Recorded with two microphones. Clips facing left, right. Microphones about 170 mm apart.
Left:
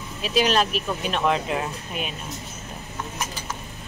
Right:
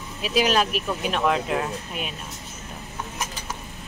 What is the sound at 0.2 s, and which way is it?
Speech, 5° right (ahead or behind).